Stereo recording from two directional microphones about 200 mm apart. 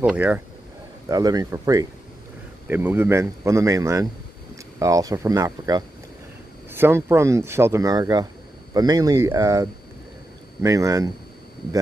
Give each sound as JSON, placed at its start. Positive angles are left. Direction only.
{"t": 0.0, "sound": "speech", "side_deg": -5}
{"t": 1.0, "sound": "speech", "side_deg": -20}